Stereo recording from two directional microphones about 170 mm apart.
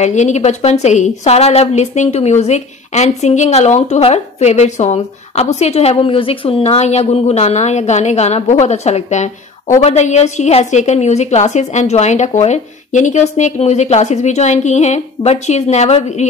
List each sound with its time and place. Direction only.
0.0 s a woman's voice: 45° left (ahead or behind)